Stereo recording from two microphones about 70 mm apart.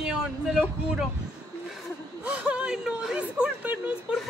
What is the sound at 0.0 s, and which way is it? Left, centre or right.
Vehicle, centre.